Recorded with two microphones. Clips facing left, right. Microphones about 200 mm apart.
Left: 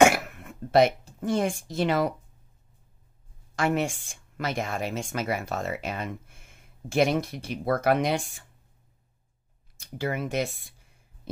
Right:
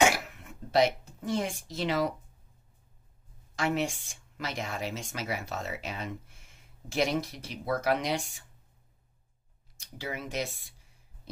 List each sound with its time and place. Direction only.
0.0 s a sound: 55° left (ahead or behind)
1.2 s speech: 55° left (ahead or behind)
3.5 s a woman's voice: 55° left (ahead or behind)
9.8 s speech: 55° left (ahead or behind)